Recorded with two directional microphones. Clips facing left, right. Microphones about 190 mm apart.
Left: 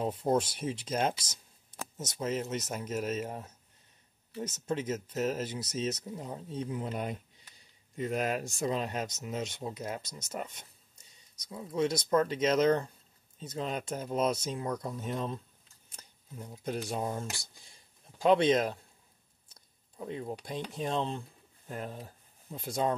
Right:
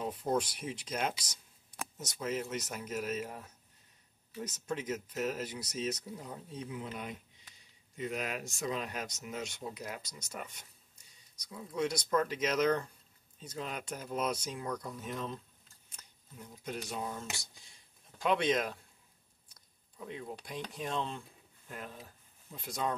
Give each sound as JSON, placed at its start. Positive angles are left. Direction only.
{"t": 0.0, "sound": "speech", "side_deg": 30}
{"t": 18.2, "sound": "speech", "side_deg": 30}
{"t": 19.5, "sound": "a sound", "side_deg": 35}
{"t": 20.7, "sound": "speech", "side_deg": 30}